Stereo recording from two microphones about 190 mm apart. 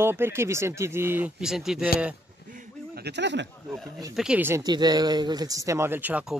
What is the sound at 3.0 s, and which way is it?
Speech, 65° right (ahead or behind).